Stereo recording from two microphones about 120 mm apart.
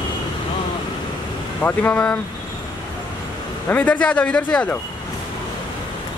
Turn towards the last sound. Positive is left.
turn(degrees=10)  # may be behind; listen again after turning